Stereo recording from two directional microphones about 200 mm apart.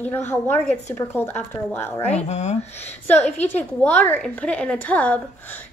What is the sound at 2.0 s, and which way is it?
Speech, 35° left (ahead or behind).